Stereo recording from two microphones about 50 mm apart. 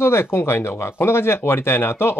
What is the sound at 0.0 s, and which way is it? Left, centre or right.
Speech, left.